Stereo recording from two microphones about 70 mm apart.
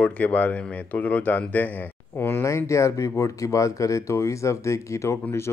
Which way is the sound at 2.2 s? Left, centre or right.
Left.